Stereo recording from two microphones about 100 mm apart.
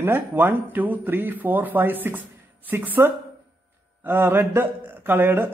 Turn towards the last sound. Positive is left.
turn(degrees=-20)  # may be behind; listen again after turning